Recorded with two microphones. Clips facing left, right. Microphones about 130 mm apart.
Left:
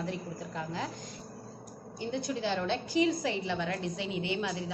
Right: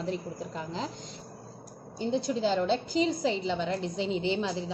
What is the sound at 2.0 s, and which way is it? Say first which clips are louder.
A woman's voice: right 5 dB; 30° right (ahead or behind).